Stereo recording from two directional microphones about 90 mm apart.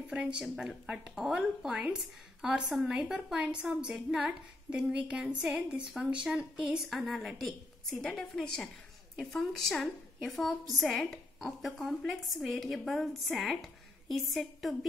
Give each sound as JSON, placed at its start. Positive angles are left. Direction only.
{"t": 0.1, "sound": "a woman's voice", "side_deg": -10}
{"t": 6.9, "sound": "a woman's voice", "side_deg": 0}